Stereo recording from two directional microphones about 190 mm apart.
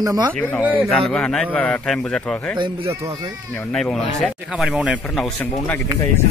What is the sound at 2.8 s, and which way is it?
Speech, 15° right (ahead or behind).